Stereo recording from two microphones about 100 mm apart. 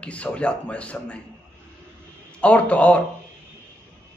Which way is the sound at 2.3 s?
10° left (ahead or behind).